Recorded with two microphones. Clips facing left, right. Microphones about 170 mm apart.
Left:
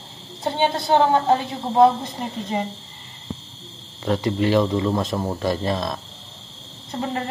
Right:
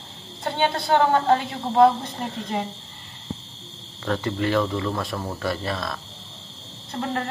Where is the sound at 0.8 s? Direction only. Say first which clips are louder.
Left 1 dB; 15° left (ahead or behind).